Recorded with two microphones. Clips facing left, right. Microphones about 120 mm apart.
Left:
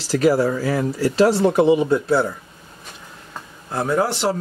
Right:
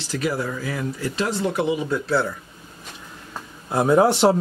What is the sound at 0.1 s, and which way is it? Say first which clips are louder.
Speech: left 8 dB; 35° left (ahead or behind).